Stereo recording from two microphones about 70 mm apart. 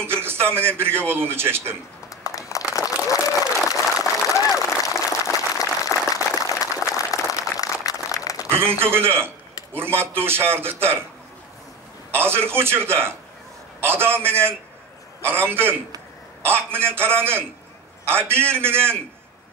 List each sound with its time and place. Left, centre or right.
0.0 s a man's voice: right
2.2 s a sound: left
3.1 s applause: left
4.6 s a sound: left
8.5 s a man's voice: right
12.1 s a man's voice: right